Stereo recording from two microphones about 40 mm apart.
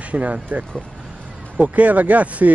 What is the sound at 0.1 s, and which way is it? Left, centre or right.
Speech, right.